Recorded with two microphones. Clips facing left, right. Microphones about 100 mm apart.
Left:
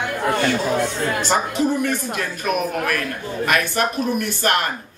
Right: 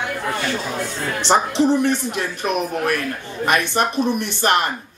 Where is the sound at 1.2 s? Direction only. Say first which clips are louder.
Right 5 dB; 25° right (ahead or behind).